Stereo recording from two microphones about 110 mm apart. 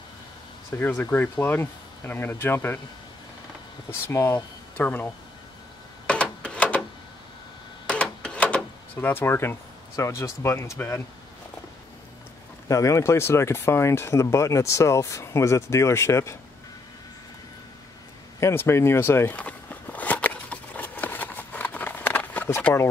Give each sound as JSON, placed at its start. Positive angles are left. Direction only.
{"t": 0.7, "sound": "speech", "side_deg": 20}
{"t": 4.1, "sound": "speech", "side_deg": 25}
{"t": 6.4, "sound": "a sound", "side_deg": 10}
{"t": 7.8, "sound": "a sound", "side_deg": 10}
{"t": 12.6, "sound": "speech", "side_deg": 30}
{"t": 18.4, "sound": "walk", "side_deg": 20}